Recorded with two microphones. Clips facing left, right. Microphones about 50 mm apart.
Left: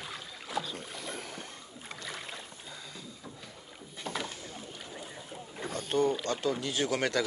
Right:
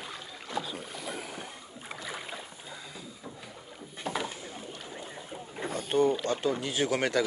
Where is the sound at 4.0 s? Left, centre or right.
Centre.